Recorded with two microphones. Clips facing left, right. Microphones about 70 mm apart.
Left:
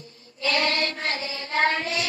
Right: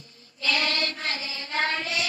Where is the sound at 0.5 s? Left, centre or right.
Left.